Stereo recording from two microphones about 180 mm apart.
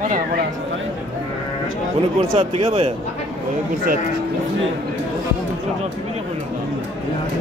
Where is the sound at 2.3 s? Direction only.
30° right (ahead or behind).